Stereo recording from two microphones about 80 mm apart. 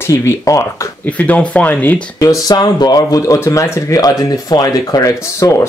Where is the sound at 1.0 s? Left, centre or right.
Centre.